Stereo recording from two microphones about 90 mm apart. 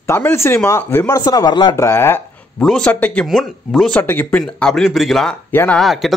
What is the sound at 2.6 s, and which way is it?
Speech, 10° left (ahead or behind).